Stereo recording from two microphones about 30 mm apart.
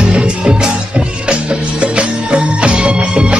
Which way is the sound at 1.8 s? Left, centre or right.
Right.